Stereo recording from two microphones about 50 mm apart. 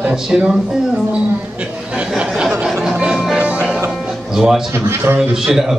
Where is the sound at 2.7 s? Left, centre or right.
Centre.